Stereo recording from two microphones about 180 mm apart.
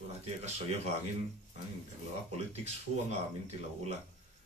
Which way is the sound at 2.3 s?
40° right (ahead or behind).